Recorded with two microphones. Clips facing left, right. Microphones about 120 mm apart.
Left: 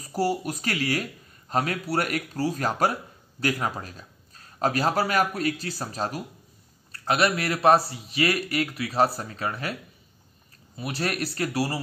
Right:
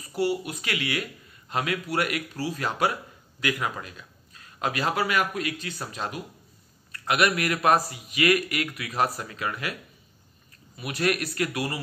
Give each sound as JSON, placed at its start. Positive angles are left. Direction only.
{"t": 0.0, "sound": "speech", "side_deg": 40}
{"t": 10.8, "sound": "speech", "side_deg": 30}